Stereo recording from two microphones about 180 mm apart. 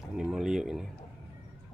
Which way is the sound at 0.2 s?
5° right (ahead or behind).